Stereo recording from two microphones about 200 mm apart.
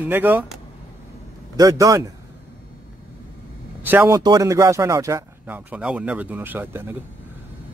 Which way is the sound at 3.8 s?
10° right (ahead or behind).